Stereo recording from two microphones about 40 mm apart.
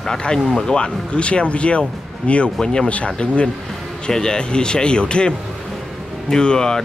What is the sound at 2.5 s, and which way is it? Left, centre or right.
Speech, centre.